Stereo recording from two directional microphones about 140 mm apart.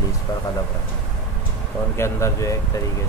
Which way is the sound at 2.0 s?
20° left (ahead or behind).